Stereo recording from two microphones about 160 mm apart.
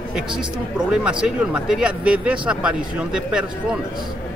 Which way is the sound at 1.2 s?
5° right (ahead or behind).